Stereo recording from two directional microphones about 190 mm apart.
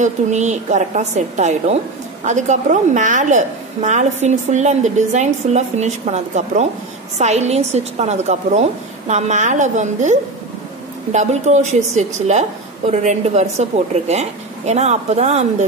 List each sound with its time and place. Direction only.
0.0 s a woman's voice: 40° right (ahead or behind)